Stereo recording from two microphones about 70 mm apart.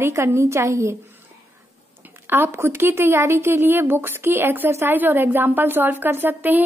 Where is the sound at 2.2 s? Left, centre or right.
Right.